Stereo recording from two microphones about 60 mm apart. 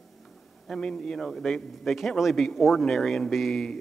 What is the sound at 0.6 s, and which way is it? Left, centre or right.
A man's voice, centre.